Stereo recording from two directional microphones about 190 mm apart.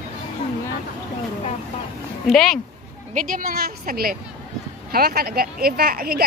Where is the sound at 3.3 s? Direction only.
50° right (ahead or behind).